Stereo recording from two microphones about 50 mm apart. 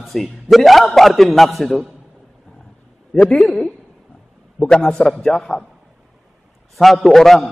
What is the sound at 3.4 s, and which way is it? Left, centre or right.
A man's voice, centre.